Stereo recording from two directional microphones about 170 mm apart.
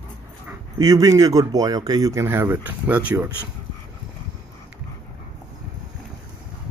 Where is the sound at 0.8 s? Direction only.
20° right (ahead or behind).